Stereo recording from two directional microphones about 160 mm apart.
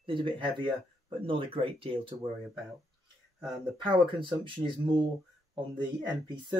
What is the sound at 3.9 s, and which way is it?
Speech, 30° right (ahead or behind).